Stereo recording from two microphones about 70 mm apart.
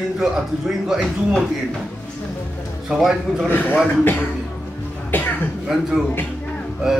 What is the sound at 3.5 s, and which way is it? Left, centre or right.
Speech, left.